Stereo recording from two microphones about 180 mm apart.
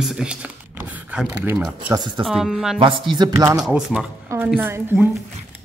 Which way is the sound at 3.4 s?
10° right (ahead or behind).